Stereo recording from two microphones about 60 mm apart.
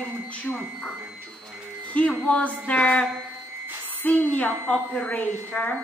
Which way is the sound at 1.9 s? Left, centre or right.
Left.